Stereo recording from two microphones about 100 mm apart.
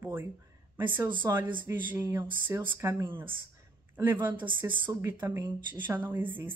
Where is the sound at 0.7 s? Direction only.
20° right (ahead or behind).